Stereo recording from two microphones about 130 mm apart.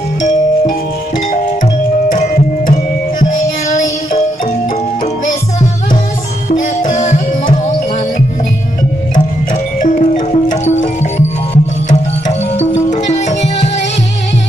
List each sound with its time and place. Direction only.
2.1 s music: 75° left (ahead or behind)
6.5 s music: 80° left
9.8 s music: 85° left
10.5 s music: 60° left (ahead or behind)